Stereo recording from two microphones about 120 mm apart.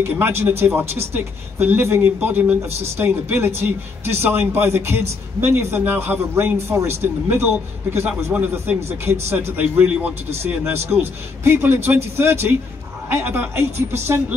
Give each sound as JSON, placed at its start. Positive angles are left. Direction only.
{"t": 0.0, "sound": "a man's voice", "side_deg": -20}